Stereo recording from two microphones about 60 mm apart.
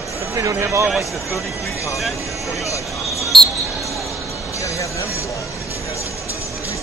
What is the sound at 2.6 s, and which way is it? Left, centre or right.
Music, left.